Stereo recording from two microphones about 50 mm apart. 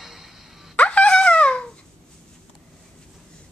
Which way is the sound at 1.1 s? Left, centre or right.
Left.